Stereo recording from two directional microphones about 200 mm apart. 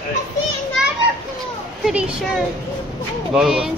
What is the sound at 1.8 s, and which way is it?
Speech, 5° right (ahead or behind).